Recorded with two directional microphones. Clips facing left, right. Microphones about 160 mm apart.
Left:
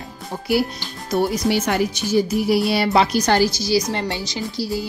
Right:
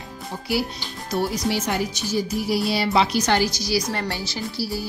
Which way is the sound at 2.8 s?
40° left (ahead or behind).